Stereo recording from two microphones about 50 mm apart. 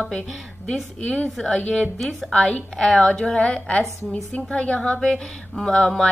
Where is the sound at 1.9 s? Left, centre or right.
Centre.